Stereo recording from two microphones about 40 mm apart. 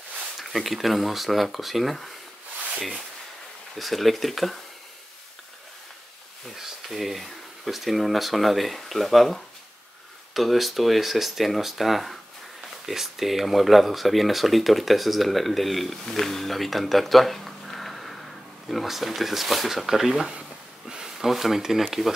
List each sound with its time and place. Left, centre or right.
0.4 s speech: centre
3.7 s speech: centre
6.5 s speech: centre
20.9 s a sound: centre
21.3 s speech: centre